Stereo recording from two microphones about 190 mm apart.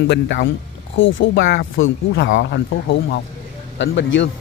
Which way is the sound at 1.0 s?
90° left.